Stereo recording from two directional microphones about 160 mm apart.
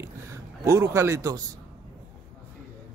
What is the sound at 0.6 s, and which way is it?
Speech, 15° right (ahead or behind).